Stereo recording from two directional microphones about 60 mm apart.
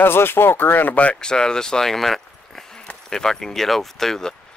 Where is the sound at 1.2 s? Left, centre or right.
Centre.